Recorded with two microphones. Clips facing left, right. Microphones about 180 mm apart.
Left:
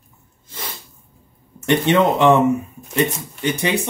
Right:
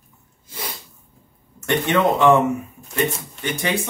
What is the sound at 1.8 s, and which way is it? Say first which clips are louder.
Speech: left 1 dB; 20° left (ahead or behind).